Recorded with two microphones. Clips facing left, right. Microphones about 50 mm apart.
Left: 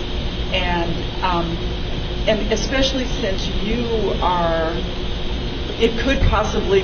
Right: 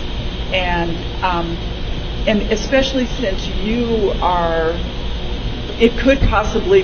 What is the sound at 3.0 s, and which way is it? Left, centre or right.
Speech, centre.